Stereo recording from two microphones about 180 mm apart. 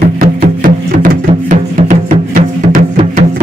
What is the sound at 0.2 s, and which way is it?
Music, 50° right (ahead or behind).